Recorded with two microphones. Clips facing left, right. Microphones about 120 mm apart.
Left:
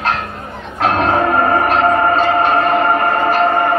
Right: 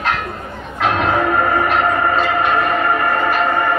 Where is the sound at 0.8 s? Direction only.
35° left (ahead or behind).